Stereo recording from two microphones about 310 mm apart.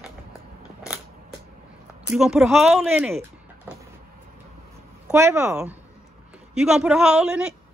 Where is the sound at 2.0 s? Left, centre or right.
Centre.